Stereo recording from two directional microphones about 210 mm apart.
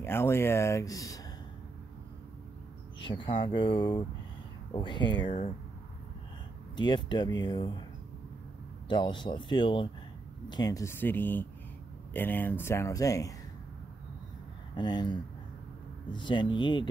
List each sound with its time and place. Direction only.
0.0 s speech: 10° left (ahead or behind)
3.0 s speech: 25° left (ahead or behind)
6.8 s speech: 20° left (ahead or behind)
8.8 s speech: 20° left (ahead or behind)
14.8 s speech: 20° left (ahead or behind)